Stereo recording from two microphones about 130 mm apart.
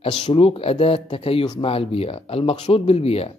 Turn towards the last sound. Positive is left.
turn(degrees=50)  # may be behind; listen again after turning